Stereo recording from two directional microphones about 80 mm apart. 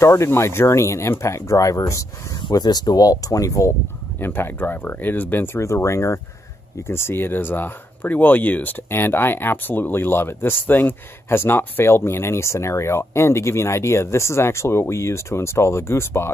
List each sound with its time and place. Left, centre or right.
0.0 s speech: left
2.5 s speech: left
4.2 s speech: left